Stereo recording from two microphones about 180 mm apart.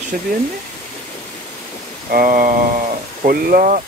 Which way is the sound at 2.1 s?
50° right (ahead or behind).